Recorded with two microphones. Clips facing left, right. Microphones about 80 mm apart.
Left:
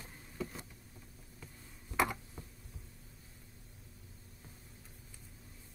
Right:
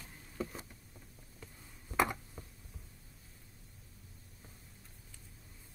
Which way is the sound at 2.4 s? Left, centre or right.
Centre.